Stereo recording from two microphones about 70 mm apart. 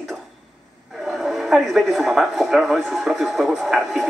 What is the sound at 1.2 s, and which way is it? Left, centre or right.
Speech, centre.